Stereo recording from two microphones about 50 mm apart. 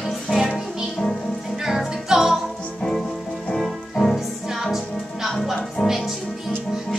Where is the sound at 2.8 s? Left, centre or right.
Centre.